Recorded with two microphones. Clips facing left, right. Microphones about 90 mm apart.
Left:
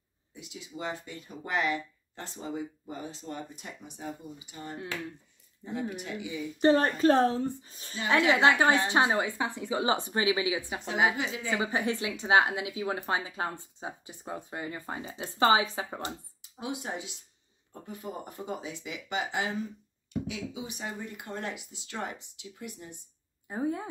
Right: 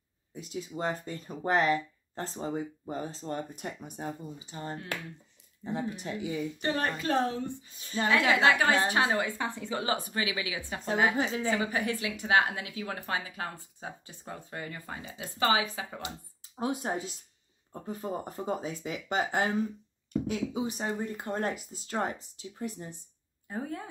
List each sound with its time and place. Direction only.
0.3 s speech: 45° right (ahead or behind)
4.4 s speech: 35° right (ahead or behind)
6.6 s speech: 35° left (ahead or behind); by 9.9 s 15° left (ahead or behind)
9.9 s speech: 25° left (ahead or behind)
16.5 s speech: 40° right (ahead or behind)
23.5 s speech: 20° left (ahead or behind)